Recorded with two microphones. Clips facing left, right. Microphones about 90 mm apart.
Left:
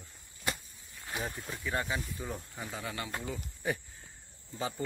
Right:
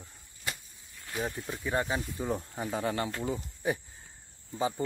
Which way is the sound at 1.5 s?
25° right (ahead or behind).